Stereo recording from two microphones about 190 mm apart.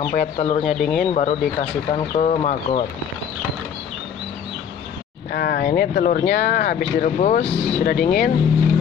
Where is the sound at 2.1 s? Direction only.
35° left (ahead or behind).